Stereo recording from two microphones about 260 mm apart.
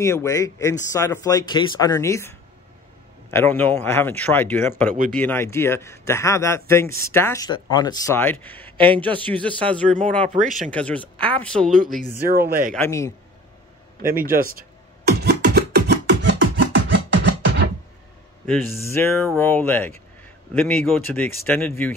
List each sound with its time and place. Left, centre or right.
0.0 s speech: centre
12.3 s a man's voice: right
12.7 s speech: centre
14.0 s a man's voice: right
15.0 s beatboxing: right
18.4 s speech: centre